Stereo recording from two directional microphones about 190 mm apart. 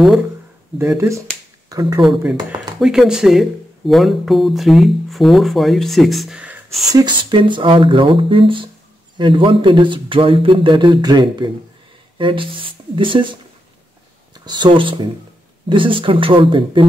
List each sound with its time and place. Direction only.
0.7 s speech: 15° right (ahead or behind)
2.8 s speech: 5° right (ahead or behind)
6.9 s speech: 20° right (ahead or behind)
14.4 s speech: 25° right (ahead or behind)